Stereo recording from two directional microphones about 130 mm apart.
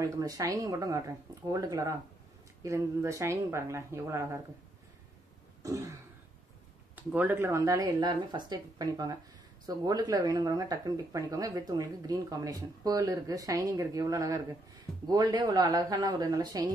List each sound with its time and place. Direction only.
0.0 s speech: 25° right (ahead or behind)
5.6 s throat clearing: 25° right (ahead or behind)
7.0 s speech: 15° right (ahead or behind); by 16.6 s 30° right (ahead or behind)